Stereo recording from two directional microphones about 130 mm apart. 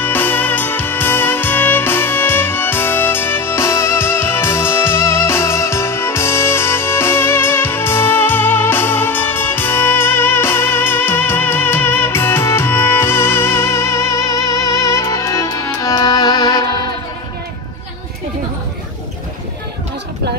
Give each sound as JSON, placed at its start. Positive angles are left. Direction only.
{"t": 0.0, "sound": "music", "side_deg": 15}